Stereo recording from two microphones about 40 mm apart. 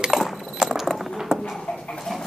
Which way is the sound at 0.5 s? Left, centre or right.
Centre.